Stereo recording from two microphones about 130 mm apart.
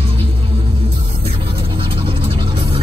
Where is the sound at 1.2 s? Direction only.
40° right (ahead or behind).